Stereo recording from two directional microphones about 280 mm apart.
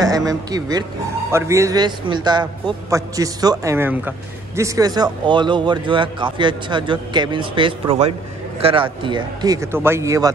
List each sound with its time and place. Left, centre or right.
0.0 s speech: centre